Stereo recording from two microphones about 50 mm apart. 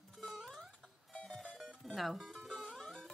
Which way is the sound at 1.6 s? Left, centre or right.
Centre.